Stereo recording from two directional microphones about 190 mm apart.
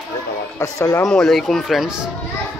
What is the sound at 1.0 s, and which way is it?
Speech, 5° left (ahead or behind).